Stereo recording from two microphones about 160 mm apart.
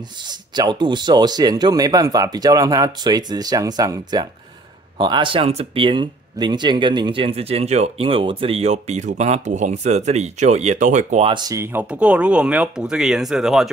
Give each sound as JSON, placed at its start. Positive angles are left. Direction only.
{"t": 0.3, "sound": "speech", "side_deg": -25}
{"t": 11.2, "sound": "speech", "side_deg": -25}